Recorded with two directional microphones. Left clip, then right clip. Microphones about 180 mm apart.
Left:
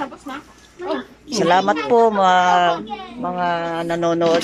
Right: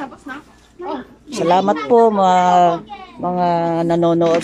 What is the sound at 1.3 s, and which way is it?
Speech, 15° right (ahead or behind).